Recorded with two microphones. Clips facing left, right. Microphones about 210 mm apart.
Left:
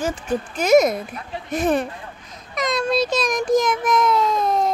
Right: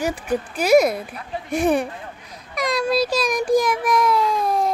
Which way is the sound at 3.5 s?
10° right (ahead or behind).